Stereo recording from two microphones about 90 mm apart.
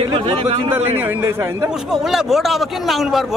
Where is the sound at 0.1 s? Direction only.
90° right.